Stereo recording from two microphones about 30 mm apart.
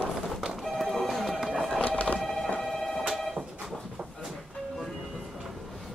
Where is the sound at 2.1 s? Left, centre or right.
Centre.